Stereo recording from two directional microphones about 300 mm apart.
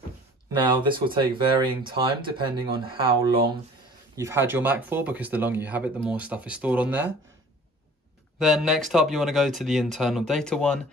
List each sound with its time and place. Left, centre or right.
0.6 s speech: centre
4.1 s speech: centre
8.4 s speech: centre